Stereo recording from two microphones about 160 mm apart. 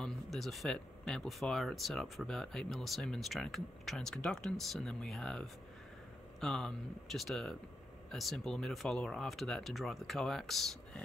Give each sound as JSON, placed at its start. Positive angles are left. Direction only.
{"t": 0.0, "sound": "speech", "side_deg": 0}